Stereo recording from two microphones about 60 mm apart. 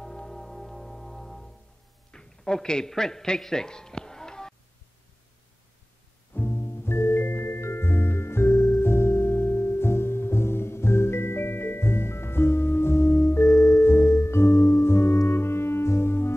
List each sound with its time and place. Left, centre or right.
0.0 s music: centre
2.0 s a sound: centre
6.3 s music: left
13.5 s music: left
13.8 s music: left